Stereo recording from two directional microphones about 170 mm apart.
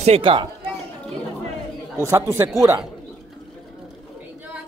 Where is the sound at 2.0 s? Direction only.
15° right (ahead or behind).